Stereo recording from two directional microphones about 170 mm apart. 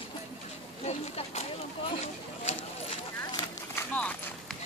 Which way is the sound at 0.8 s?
40° left (ahead or behind).